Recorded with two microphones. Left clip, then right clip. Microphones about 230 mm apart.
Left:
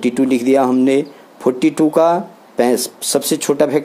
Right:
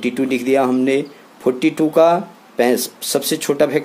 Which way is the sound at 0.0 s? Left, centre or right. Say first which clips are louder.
Left 4 dB; centre.